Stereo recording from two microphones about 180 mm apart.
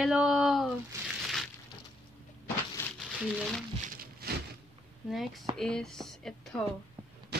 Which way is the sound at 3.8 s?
55° right (ahead or behind).